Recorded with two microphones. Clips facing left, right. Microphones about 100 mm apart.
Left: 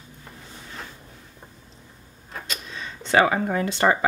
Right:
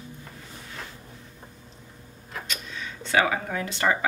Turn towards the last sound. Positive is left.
turn(degrees=35)  # may be behind; listen again after turning